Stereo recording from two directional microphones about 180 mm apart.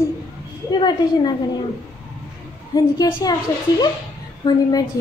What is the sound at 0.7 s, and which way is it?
Speech, 25° left (ahead or behind).